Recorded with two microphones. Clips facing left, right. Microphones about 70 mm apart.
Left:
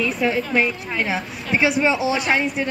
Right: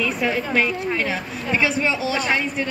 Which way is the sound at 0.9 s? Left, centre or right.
Centre.